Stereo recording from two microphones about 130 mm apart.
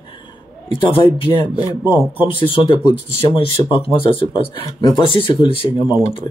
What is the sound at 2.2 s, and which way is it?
Speech, 45° left (ahead or behind).